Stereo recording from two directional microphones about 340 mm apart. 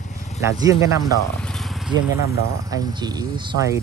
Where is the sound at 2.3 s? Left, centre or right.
Left.